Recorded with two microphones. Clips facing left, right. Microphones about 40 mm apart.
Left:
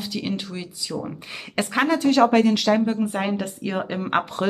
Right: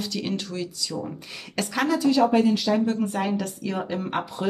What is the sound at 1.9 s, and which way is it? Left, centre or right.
Speech, left.